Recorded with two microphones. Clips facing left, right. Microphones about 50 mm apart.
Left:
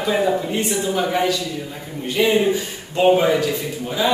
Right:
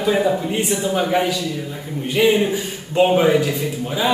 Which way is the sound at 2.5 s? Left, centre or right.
Centre.